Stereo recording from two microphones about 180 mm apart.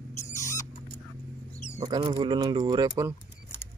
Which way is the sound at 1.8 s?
20° right (ahead or behind).